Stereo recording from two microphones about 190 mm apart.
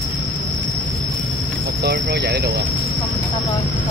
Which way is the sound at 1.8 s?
60° right (ahead or behind).